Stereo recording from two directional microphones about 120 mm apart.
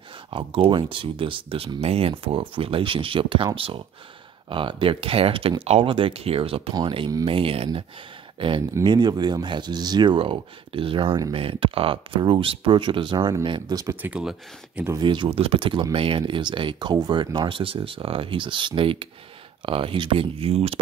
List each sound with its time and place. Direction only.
0.3 s speech: 45° right (ahead or behind); by 13.9 s 30° right (ahead or behind)
14.0 s speech: 10° right (ahead or behind)
15.0 s speech: 40° right (ahead or behind)